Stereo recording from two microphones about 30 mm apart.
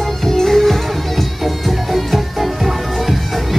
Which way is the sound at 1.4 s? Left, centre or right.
Centre.